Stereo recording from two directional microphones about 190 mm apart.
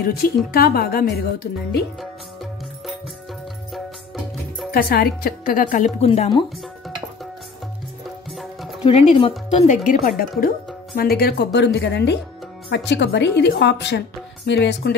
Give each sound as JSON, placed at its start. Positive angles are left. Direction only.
{"t": 0.0, "sound": "speech", "side_deg": 50}
{"t": 4.6, "sound": "speech", "side_deg": 50}
{"t": 8.3, "sound": "music", "side_deg": 0}
{"t": 8.8, "sound": "speech", "side_deg": 30}
{"t": 11.0, "sound": "speech", "side_deg": 55}